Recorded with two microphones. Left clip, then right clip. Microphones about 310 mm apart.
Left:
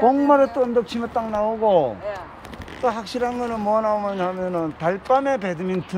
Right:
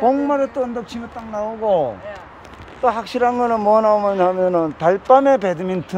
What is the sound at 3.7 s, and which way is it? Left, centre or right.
Speech, right.